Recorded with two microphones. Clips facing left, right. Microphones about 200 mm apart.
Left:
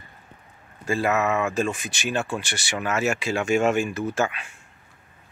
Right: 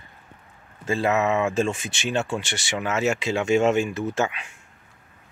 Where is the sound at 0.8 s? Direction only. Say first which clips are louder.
Right 1 dB; 20° right (ahead or behind).